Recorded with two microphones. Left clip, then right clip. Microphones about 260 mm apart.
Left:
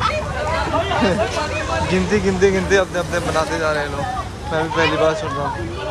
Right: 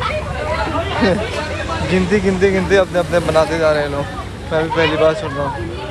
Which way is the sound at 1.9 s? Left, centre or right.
Centre.